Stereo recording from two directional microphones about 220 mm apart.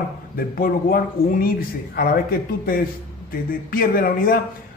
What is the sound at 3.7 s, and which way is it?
Speech, 40° left (ahead or behind).